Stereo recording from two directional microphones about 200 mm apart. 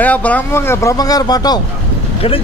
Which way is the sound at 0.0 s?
5° left (ahead or behind).